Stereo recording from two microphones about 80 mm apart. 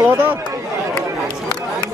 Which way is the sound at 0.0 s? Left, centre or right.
Right.